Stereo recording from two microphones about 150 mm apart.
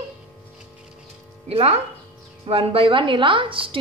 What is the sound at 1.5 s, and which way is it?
A woman's voice, 40° right (ahead or behind).